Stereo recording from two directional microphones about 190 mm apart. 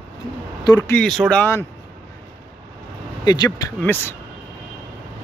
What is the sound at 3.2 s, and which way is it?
Speech, 20° left (ahead or behind).